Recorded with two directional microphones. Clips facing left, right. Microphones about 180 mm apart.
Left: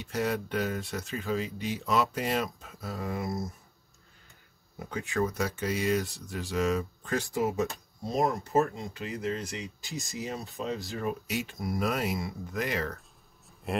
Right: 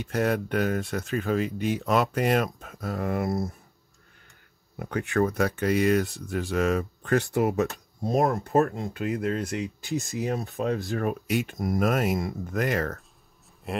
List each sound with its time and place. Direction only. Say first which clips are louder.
0.0 s speech: right 5 dB; 55° right (ahead or behind)
4.7 s speech: right 5 dB; 65° right (ahead or behind); by 13.0 s 50° right (ahead or behind)
13.7 s speech: even; centre (ahead or behind)